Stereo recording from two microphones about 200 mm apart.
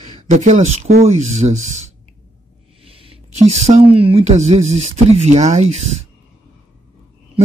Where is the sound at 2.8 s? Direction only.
25° right (ahead or behind).